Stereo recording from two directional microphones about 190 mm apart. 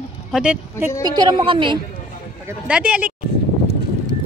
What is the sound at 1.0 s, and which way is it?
Speech, 25° right (ahead or behind).